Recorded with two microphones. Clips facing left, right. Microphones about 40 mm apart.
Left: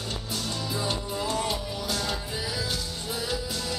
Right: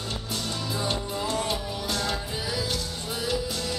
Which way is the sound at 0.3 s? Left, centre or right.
Centre.